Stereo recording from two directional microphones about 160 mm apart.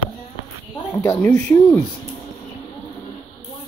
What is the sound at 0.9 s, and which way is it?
Speech, 15° left (ahead or behind).